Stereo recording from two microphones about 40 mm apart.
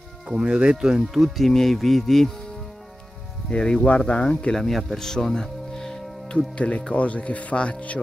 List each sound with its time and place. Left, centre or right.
0.4 s speech: right
1.1 s speech: centre
3.4 s speech: left
4.5 s speech: centre
6.3 s speech: left